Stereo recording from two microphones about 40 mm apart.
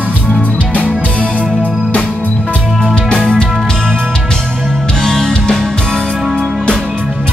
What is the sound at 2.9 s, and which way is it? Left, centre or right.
Music, left.